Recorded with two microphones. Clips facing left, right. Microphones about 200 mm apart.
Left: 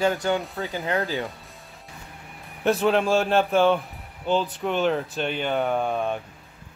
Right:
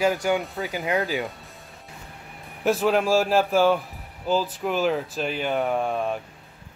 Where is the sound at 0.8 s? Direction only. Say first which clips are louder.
Right 1 dB; 15° right (ahead or behind).